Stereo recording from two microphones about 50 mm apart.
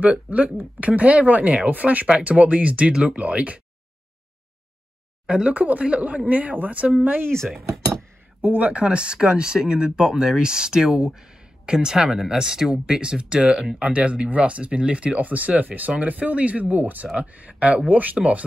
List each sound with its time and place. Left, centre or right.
0.0 s speech: right
5.2 s speech: right
8.4 s speech: right
8.6 s speech: right